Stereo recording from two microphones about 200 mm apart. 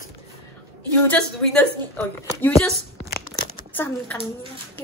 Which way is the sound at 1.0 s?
5° left (ahead or behind).